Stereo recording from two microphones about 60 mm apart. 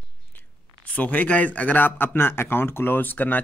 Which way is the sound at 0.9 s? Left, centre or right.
Left.